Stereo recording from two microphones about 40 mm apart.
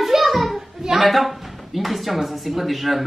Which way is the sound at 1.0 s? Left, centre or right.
Centre.